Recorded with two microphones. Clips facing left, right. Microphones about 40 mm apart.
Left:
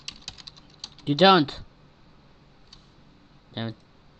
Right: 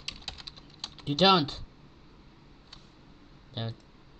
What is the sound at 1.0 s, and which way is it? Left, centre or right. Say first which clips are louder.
Speech: left 6 dB; left.